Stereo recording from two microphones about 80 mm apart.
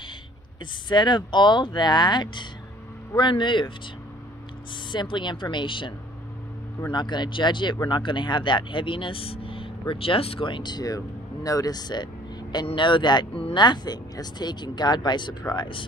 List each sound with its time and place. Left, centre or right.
0.8 s speech: left
4.9 s speech: left
6.9 s speech: left
10.4 s speech: left
12.5 s speech: left